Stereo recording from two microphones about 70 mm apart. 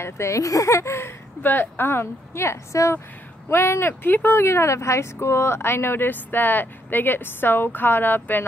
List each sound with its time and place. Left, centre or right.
0.0 s speech: left
3.4 s speech: left